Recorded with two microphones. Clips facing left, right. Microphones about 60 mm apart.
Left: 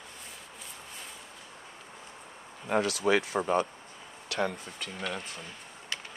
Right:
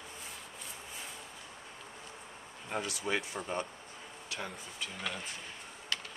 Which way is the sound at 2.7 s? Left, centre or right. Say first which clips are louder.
Left 9 dB; left.